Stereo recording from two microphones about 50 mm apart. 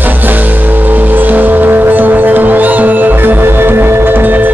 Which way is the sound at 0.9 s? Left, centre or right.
Right.